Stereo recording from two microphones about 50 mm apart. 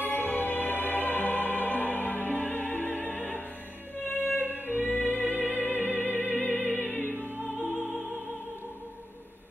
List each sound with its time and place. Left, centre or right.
0.0 s music: left